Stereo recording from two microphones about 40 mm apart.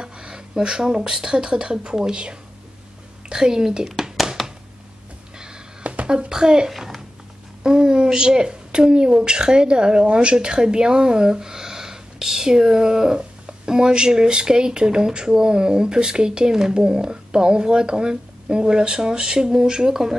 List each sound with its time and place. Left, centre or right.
0.0 s speech: right
6.0 s speech: right